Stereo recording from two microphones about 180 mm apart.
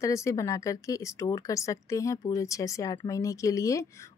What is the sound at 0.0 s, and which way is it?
Speech, 15° left (ahead or behind).